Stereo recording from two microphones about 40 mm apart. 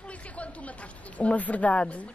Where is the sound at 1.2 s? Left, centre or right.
Left.